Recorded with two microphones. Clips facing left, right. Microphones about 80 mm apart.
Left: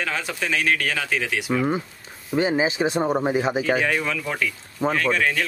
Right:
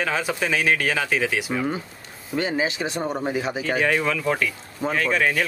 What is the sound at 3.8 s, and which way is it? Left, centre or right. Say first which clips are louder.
Speech: right 2 dB; centre.